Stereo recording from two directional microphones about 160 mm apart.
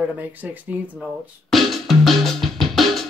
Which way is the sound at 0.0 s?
10° right (ahead or behind).